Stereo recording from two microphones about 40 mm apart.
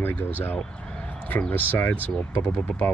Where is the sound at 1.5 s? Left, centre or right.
Left.